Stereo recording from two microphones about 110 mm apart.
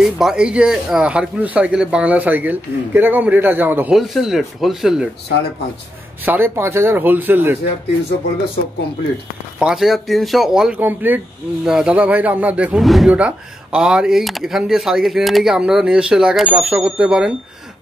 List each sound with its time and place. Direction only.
0.0 s speech: 5° right (ahead or behind)
3.9 s speech: 5° right (ahead or behind)
6.2 s speech: 20° right (ahead or behind)
9.6 s speech: 5° right (ahead or behind)
10.8 s speech: 15° right (ahead or behind)
11.6 s speech: 5° right (ahead or behind)
12.7 s speech: centre (ahead or behind)